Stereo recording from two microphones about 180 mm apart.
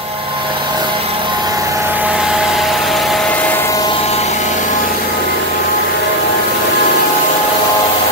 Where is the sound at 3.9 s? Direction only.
35° left (ahead or behind).